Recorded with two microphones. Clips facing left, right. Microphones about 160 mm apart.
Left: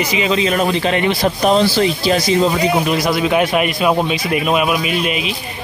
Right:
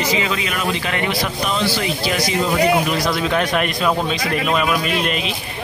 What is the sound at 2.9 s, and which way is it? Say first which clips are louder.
Speech: left 4 dB; 10° left (ahead or behind).